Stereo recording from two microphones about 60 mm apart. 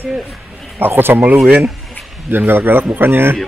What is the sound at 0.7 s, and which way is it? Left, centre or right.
Speech, right.